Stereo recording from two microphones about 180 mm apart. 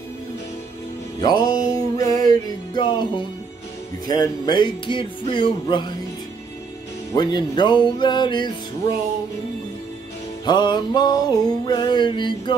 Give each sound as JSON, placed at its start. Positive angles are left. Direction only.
{"t": 1.2, "sound": "music", "side_deg": 25}
{"t": 7.2, "sound": "music", "side_deg": 25}
{"t": 10.4, "sound": "music", "side_deg": 25}